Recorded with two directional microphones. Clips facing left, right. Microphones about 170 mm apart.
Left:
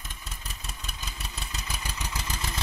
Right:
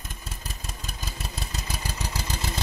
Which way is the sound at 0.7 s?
40° right (ahead or behind).